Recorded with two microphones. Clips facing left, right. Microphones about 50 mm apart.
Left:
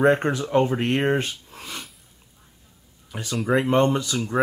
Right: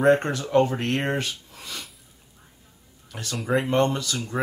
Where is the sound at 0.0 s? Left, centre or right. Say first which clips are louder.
Even; centre.